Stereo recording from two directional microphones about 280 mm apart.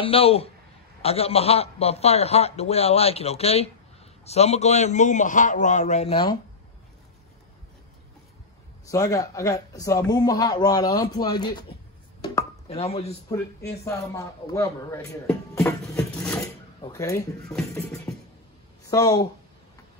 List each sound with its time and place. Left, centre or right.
0.0 s a man's voice: centre
8.8 s a man's voice: centre
12.2 s a sound: centre
13.6 s a man's voice: centre